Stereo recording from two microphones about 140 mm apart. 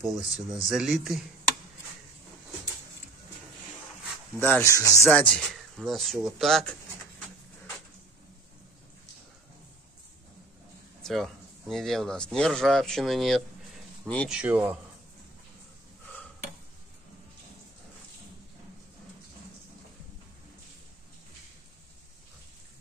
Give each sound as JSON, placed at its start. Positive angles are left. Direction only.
{"t": 0.0, "sound": "speech", "side_deg": -5}
{"t": 4.4, "sound": "speech", "side_deg": 10}
{"t": 4.7, "sound": "speech", "side_deg": 25}
{"t": 5.1, "sound": "speech", "side_deg": 5}
{"t": 11.0, "sound": "speech", "side_deg": 0}
{"t": 14.3, "sound": "a man's voice", "side_deg": -10}